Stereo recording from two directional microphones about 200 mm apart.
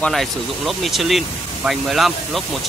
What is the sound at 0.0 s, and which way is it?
Speech, centre (ahead or behind).